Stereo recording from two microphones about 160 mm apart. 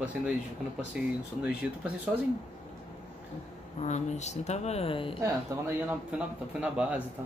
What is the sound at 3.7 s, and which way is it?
A woman's voice, 45° left (ahead or behind).